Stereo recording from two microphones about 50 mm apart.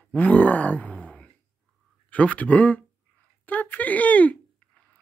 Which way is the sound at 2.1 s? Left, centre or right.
Left.